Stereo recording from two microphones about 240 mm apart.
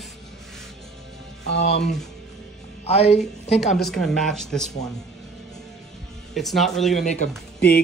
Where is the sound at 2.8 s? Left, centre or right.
Left.